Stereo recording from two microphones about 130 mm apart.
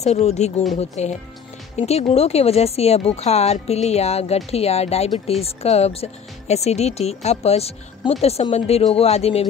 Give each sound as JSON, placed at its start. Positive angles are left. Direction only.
{"t": 0.0, "sound": "speech", "side_deg": 55}